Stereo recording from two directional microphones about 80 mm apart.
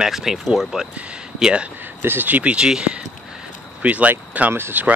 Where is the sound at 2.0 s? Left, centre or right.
Right.